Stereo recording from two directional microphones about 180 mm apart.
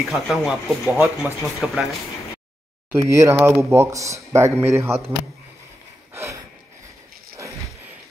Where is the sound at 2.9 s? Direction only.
15° right (ahead or behind).